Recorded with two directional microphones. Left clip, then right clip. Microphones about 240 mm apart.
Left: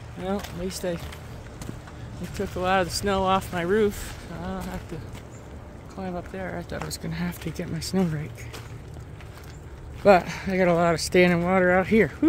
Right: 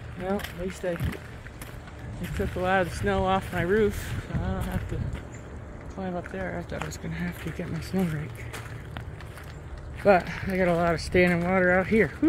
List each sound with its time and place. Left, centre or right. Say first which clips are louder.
0.2 s speech: even; centre
2.3 s speech: left 1 dB; centre
5.9 s speech: even; centre
7.1 s speech: left 2 dB; left
10.0 s speech: left 3 dB; centre